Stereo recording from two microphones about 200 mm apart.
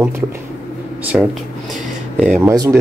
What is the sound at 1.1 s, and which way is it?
Speech, centre (ahead or behind).